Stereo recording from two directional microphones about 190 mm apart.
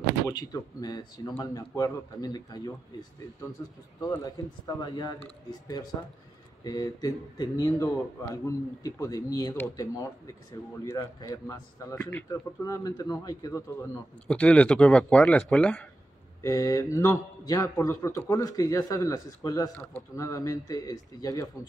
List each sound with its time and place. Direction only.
0.3 s a man's voice: 20° left (ahead or behind)
14.2 s speech: 5° left (ahead or behind)
16.4 s a man's voice: 20° left (ahead or behind)